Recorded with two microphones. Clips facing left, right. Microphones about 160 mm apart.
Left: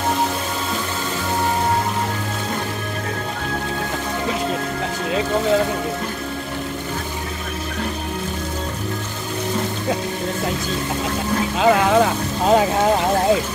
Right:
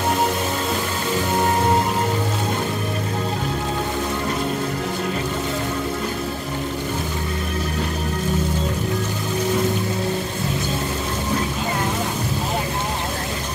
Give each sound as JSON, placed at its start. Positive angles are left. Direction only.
{"t": 11.6, "sound": "vehicle", "side_deg": 90}